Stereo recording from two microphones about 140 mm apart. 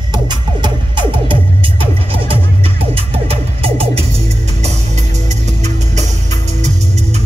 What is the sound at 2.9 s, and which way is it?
Music, 45° right (ahead or behind).